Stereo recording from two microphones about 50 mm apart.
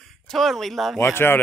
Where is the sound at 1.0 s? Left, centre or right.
Left.